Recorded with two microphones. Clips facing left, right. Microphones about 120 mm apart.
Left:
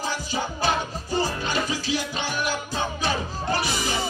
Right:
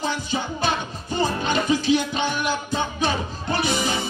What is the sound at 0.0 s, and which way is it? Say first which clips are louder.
Music: right 2 dB; 20° right (ahead or behind).